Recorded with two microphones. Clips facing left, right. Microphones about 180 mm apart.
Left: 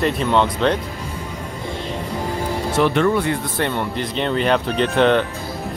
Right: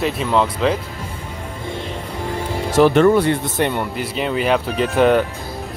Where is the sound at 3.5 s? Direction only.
15° right (ahead or behind).